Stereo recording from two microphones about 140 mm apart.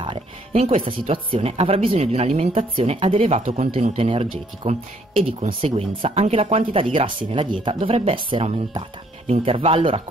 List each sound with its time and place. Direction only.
0.5 s speech: 50° right (ahead or behind)